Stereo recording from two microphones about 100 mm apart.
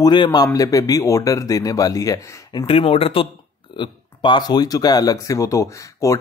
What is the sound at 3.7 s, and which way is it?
Speech, 50° left (ahead or behind).